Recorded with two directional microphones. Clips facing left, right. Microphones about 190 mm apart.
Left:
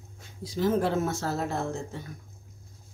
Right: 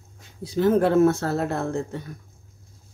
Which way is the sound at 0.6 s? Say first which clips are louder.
Right 8 dB; 60° right (ahead or behind).